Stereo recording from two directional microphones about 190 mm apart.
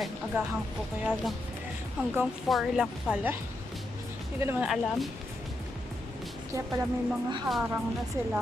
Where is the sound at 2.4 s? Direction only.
Centre (ahead or behind).